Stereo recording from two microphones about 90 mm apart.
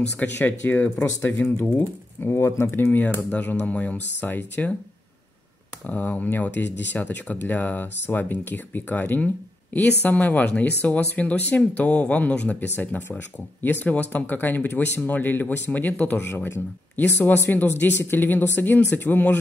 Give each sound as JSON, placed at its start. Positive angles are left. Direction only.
{"t": 0.2, "sound": "speech", "side_deg": 20}
{"t": 5.9, "sound": "speech", "side_deg": 20}